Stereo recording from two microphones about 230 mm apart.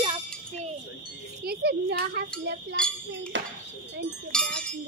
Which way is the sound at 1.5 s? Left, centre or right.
Right.